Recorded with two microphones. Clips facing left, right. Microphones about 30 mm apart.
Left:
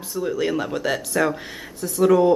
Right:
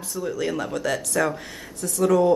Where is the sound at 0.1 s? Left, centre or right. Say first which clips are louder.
Left 4 dB; centre.